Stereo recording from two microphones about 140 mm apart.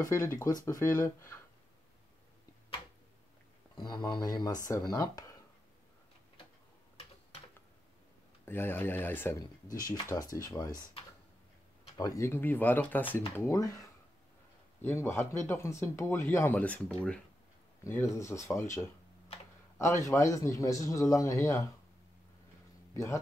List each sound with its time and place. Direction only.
0.0 s a man's voice: 20° left (ahead or behind)
3.7 s a man's voice: 30° left (ahead or behind)
8.5 s speech: 15° left (ahead or behind)
9.7 s a man's voice: 25° left (ahead or behind)
12.0 s speech: 20° left (ahead or behind)
13.4 s a man's voice: 25° left (ahead or behind)
17.8 s a man's voice: 20° left (ahead or behind)